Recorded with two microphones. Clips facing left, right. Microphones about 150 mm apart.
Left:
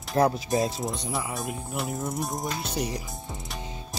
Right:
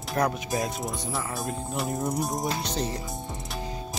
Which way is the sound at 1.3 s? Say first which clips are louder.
Right 1 dB; centre (ahead or behind).